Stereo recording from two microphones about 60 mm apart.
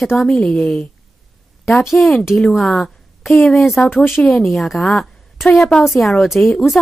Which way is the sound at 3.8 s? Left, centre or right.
Left.